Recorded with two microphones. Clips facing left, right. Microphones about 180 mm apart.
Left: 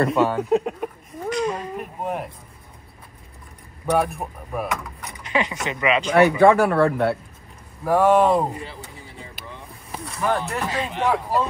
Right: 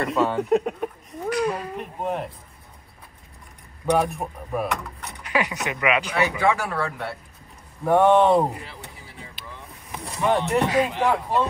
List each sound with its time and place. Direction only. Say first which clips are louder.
0.1 s speech: left 1 dB; centre (ahead or behind)
3.8 s speech: even; centre (ahead or behind)
6.1 s speech: left 8 dB; 60° left (ahead or behind)
7.8 s speech: even; centre (ahead or behind)
10.0 s a sound: right 2 dB; centre (ahead or behind)
10.5 s speech: right 6 dB; 15° right (ahead or behind)